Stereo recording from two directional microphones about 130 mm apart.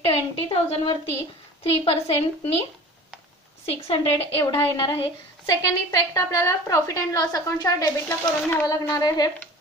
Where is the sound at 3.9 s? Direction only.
45° left (ahead or behind).